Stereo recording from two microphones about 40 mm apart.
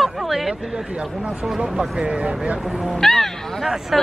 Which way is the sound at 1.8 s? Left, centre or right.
Right.